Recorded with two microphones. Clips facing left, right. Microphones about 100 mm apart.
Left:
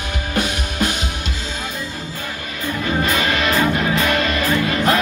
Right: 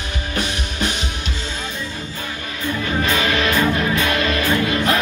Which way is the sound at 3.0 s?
35° left (ahead or behind).